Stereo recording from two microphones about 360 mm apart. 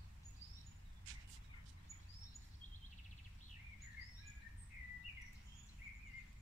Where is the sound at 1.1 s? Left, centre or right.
Right.